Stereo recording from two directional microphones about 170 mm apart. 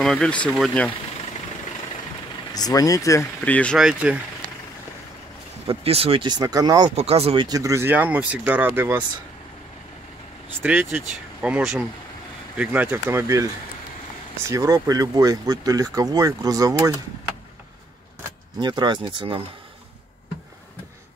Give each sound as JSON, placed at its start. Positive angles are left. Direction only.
{"t": 0.0, "sound": "speech", "side_deg": 5}
{"t": 2.5, "sound": "speech", "side_deg": 20}
{"t": 3.7, "sound": "speech", "side_deg": -5}
{"t": 5.7, "sound": "speech", "side_deg": -35}
{"t": 7.0, "sound": "speech", "side_deg": -35}
{"t": 7.4, "sound": "speech", "side_deg": -20}
{"t": 10.6, "sound": "speech", "side_deg": -10}
{"t": 18.6, "sound": "speech", "side_deg": -25}